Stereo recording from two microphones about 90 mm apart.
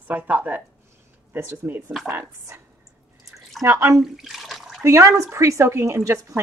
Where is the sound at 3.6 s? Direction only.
25° right (ahead or behind).